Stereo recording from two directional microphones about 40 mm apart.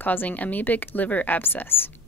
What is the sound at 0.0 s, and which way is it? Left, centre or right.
A woman's voice, left.